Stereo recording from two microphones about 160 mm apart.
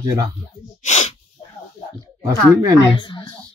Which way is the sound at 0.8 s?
45° left (ahead or behind).